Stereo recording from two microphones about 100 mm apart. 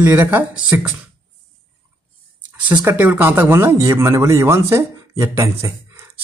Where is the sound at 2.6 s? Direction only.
15° right (ahead or behind).